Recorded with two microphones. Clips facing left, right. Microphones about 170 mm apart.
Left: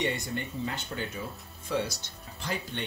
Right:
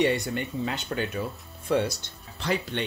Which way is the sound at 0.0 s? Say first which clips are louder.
Right 7 dB; 70° right (ahead or behind).